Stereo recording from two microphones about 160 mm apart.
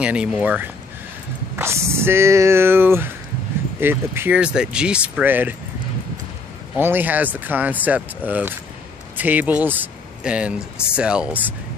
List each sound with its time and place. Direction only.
0.0 s speech: 5° right (ahead or behind)
6.8 s speech: 10° right (ahead or behind)